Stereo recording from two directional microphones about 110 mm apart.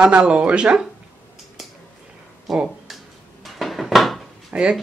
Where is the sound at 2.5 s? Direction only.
Centre (ahead or behind).